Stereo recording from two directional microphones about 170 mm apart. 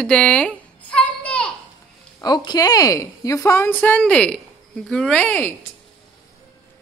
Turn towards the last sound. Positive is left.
turn(degrees=10)  # may be behind; listen again after turning